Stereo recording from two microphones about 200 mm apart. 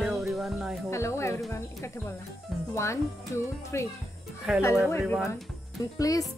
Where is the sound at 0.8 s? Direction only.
15° left (ahead or behind).